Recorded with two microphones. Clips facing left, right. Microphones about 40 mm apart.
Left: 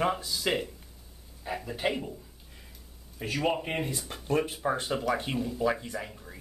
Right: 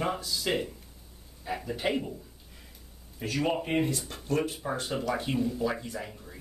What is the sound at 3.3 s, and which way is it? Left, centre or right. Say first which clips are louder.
Speech: right 2 dB; centre.